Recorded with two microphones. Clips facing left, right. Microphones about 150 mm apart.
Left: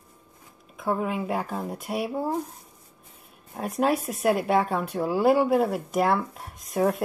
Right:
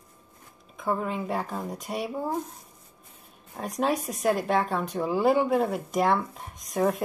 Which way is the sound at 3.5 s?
5° left (ahead or behind).